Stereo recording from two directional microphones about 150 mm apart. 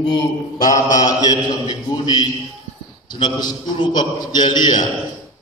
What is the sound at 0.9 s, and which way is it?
A man's voice, 25° left (ahead or behind).